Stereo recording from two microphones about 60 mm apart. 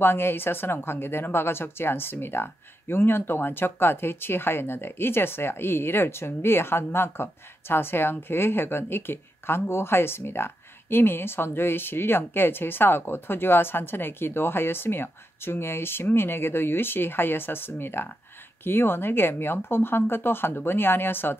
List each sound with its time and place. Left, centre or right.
0.0 s speech: left